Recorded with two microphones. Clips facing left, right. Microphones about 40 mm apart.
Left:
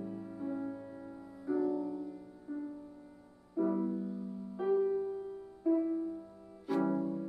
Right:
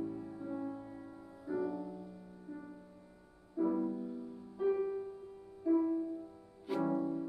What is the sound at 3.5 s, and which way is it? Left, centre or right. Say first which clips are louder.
Music: left 1 dB; centre.